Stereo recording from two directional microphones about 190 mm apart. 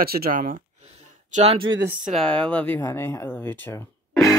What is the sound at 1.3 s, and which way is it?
Speech, 35° right (ahead or behind).